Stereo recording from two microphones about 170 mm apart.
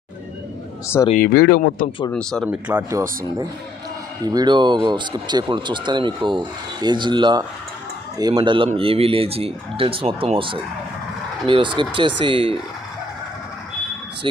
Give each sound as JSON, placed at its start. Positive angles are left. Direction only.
{"t": 1.1, "sound": "speech", "side_deg": 65}
{"t": 2.4, "sound": "speech", "side_deg": -10}